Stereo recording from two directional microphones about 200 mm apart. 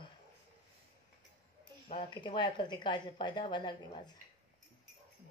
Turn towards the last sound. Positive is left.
turn(degrees=25)  # may be behind; listen again after turning